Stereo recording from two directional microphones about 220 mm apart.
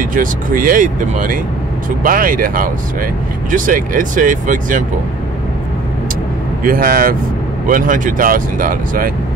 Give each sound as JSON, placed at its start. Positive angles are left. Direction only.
{"t": 0.0, "sound": "speech", "side_deg": -40}
{"t": 6.6, "sound": "speech", "side_deg": -40}